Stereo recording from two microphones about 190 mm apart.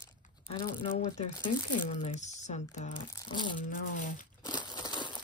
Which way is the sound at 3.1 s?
25° left (ahead or behind).